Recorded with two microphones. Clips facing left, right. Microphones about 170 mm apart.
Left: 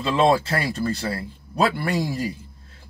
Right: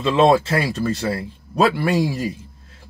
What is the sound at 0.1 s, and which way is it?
Speech, 75° right (ahead or behind).